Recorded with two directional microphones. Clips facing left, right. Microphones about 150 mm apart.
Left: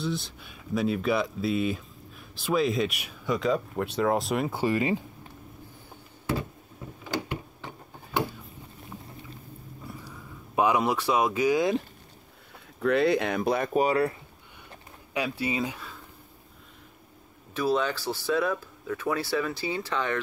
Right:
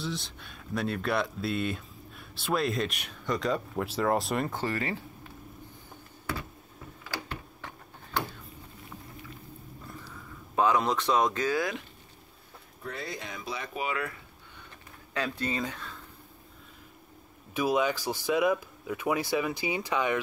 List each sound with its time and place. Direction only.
0.0 s speech: centre (ahead or behind); by 5.0 s 15° left (ahead or behind)
7.1 s a sound: 15° left (ahead or behind)
9.8 s a sound: 10° left (ahead or behind)
12.8 s speech: 70° left (ahead or behind); by 14.1 s 35° left (ahead or behind)
15.1 s speech: 10° left (ahead or behind)
17.6 s speech: 10° right (ahead or behind)